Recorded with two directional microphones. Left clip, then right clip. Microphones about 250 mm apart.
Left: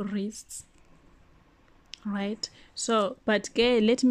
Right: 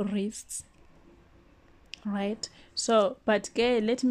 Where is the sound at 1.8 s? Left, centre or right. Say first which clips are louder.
Right 1 dB; centre.